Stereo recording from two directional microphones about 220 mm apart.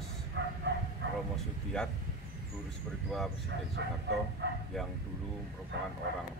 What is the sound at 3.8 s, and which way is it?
Speech, 50° right (ahead or behind).